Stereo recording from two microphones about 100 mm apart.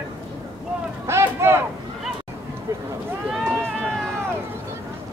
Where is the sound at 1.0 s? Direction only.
25° right (ahead or behind).